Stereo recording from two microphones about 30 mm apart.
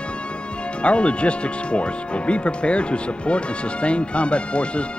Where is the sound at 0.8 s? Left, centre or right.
Left.